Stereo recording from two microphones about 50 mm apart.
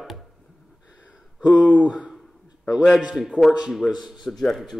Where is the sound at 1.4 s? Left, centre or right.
Right.